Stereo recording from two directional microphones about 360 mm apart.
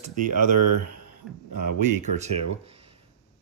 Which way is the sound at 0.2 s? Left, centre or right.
Right.